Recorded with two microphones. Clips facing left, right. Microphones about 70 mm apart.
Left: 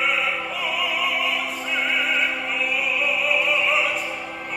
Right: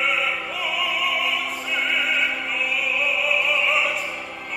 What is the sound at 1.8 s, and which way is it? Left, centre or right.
Opera, left.